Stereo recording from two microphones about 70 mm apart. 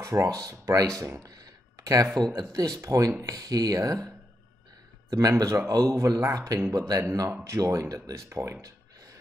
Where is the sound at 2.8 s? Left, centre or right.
Right.